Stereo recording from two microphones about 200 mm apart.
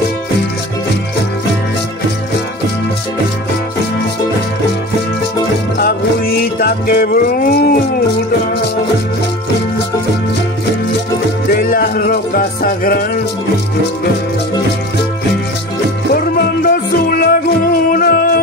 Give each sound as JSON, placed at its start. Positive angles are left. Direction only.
{"t": 5.8, "sound": "music", "side_deg": 50}
{"t": 11.5, "sound": "music", "side_deg": 50}
{"t": 16.1, "sound": "music", "side_deg": 45}